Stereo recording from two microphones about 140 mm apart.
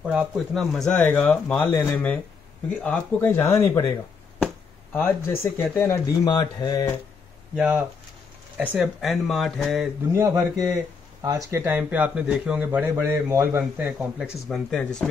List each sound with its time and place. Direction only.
0.0 s a man's voice: 10° right (ahead or behind)
0.7 s speech: 5° left (ahead or behind)
4.9 s speech: 15° left (ahead or behind)
7.5 s a man's voice: 5° right (ahead or behind)
10.1 s speech: 20° right (ahead or behind)
11.6 s a man's voice: 10° right (ahead or behind)
13.8 s speech: 5° right (ahead or behind)